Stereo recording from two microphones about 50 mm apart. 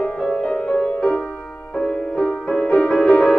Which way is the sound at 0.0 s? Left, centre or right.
Centre.